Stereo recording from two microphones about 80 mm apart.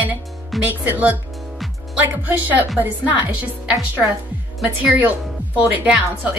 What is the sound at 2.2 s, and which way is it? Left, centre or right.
A woman's voice, right.